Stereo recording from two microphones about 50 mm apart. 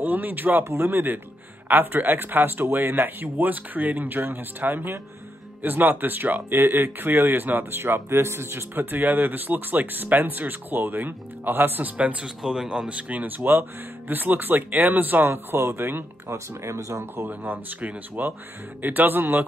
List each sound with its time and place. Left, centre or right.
0.0 s speech: right
7.8 s speech: right
8.7 s speech: right
12.4 s speech: centre; by 16.1 s right
16.3 s speech: right
17.1 s speech: right